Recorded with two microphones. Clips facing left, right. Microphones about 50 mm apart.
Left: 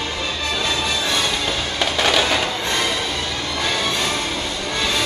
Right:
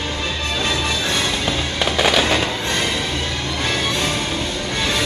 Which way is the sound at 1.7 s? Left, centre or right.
Centre.